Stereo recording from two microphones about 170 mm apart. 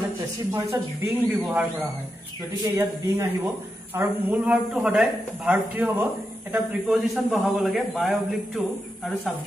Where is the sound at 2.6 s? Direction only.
15° right (ahead or behind).